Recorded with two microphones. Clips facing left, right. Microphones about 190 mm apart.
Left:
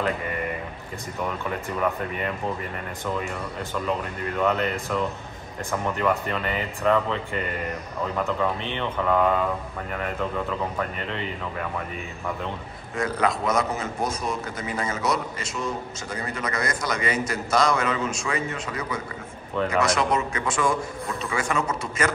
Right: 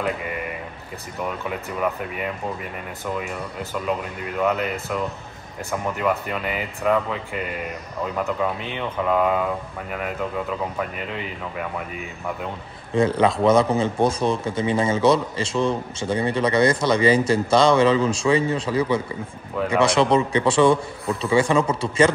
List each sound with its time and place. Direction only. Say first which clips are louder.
4.4 s speech: right 1 dB; 10° right (ahead or behind)
5.9 s speech: right 1 dB; 5° right (ahead or behind)
8.2 s speech: right 1 dB; 5° right (ahead or behind)
12.9 s a man's voice: right 6 dB; 25° right (ahead or behind)